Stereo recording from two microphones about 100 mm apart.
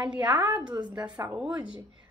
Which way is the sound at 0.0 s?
10° right (ahead or behind).